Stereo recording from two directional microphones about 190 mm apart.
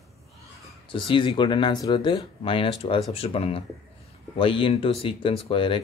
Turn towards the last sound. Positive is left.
turn(degrees=25)  # may be behind; listen again after turning